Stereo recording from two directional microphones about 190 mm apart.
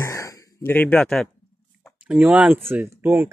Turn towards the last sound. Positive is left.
turn(degrees=-10)  # may be behind; listen again after turning